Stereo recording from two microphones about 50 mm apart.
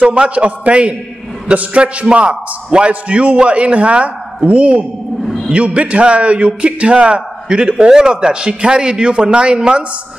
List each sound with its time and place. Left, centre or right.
0.0 s a man's voice: right
5.2 s a sound: centre
5.5 s a man's voice: right